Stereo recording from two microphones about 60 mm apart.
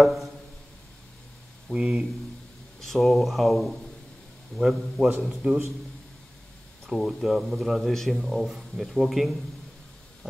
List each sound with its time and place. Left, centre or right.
0.0 s a sound: centre
1.7 s speech: centre
2.8 s speech: centre
6.9 s speech: centre